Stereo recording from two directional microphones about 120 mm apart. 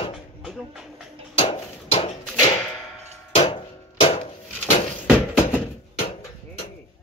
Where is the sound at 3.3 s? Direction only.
50° left (ahead or behind).